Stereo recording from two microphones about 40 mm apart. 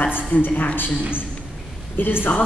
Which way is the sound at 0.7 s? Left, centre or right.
Left.